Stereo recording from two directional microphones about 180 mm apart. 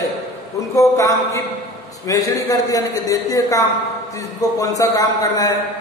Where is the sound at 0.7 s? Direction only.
15° left (ahead or behind).